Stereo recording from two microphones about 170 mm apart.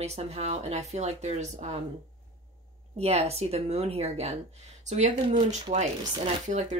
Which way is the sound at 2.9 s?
40° right (ahead or behind).